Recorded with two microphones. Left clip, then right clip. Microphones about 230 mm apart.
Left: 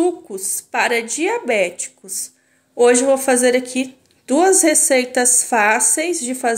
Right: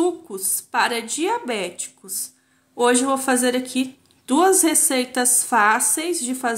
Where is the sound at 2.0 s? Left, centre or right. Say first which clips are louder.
Left 3 dB; centre.